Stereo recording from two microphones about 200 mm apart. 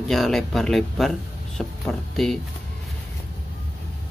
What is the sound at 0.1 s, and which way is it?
Speech, centre (ahead or behind).